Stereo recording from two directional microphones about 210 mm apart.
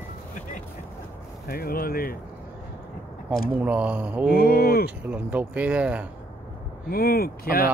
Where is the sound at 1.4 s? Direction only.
45° left (ahead or behind).